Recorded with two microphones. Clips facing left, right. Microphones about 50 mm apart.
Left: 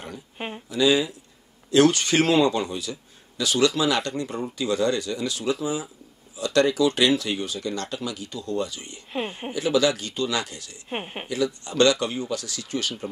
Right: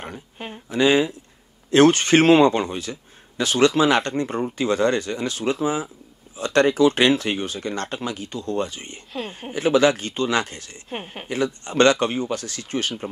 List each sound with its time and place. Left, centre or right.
0.7 s speech: right
10.9 s a woman's voice: centre
11.2 s speech: right